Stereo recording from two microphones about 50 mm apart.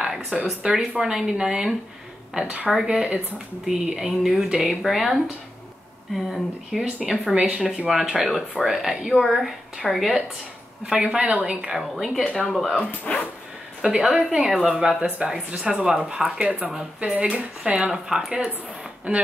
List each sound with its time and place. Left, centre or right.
0.0 s speech: centre
2.7 s speech: centre
7.3 s speech: right
7.6 s speech: centre
11.0 s speech: right
11.7 s speech: centre
13.0 s speech: left
13.8 s speech: centre
14.9 s speech: right
15.2 s speech: centre; by 17.7 s right
17.7 s speech: centre
19.1 s speech: right